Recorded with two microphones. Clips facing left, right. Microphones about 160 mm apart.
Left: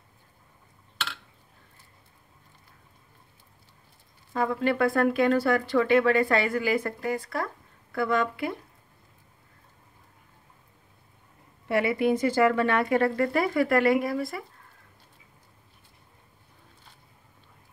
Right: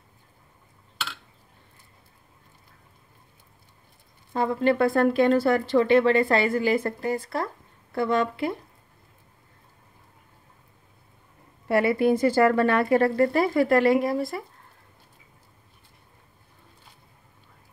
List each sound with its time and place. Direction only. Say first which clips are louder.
4.3 s speech: right 3 dB; 30° right (ahead or behind)
11.6 s speech: right 3 dB; 35° right (ahead or behind)